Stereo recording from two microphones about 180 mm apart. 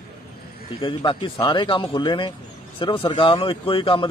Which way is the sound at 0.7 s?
30° left (ahead or behind).